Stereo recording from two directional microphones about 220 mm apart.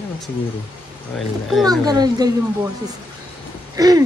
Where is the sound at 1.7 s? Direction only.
15° right (ahead or behind).